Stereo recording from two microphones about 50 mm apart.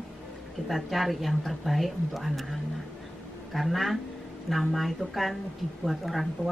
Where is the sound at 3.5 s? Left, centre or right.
Centre.